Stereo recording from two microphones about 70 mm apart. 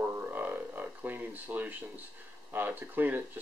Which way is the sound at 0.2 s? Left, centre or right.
Right.